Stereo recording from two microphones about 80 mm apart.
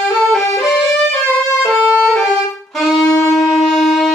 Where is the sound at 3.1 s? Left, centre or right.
Left.